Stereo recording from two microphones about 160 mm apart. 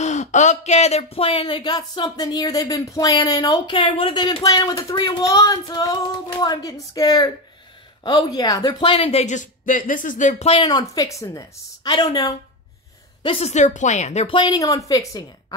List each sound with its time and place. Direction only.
0.0 s speech: 45° left (ahead or behind)
10.5 s speech: 25° left (ahead or behind)
13.2 s speech: 40° left (ahead or behind); by 15.2 s 20° left (ahead or behind)